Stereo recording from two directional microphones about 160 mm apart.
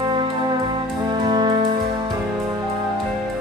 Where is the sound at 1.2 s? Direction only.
30° right (ahead or behind).